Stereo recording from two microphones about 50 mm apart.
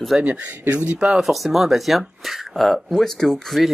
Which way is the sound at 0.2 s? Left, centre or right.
Right.